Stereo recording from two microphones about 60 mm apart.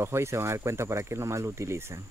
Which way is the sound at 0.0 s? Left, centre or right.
Right.